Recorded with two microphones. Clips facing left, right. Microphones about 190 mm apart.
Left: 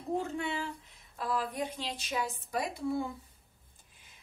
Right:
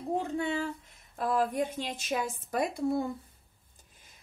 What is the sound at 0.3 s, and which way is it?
Speech, 40° right (ahead or behind).